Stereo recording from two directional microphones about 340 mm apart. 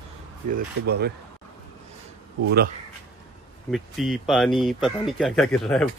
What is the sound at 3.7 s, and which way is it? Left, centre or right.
Speech, centre.